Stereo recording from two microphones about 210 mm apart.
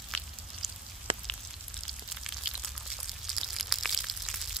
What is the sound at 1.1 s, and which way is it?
Frying, 25° right (ahead or behind).